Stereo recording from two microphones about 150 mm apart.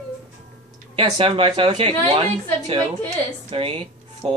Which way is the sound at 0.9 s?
40° right (ahead or behind).